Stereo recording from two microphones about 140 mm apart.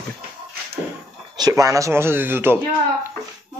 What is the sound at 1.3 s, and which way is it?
Speech, 25° right (ahead or behind).